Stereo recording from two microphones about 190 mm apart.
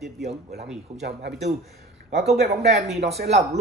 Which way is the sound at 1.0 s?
60° right (ahead or behind).